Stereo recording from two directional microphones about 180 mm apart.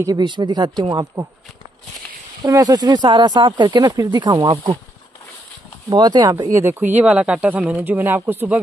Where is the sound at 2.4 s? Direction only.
20° right (ahead or behind).